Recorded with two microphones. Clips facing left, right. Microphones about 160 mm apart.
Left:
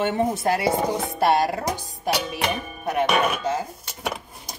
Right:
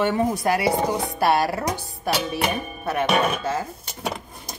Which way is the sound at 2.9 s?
15° left (ahead or behind).